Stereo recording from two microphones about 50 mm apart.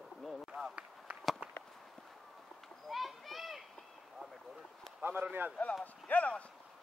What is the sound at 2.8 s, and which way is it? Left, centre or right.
Children playing, centre.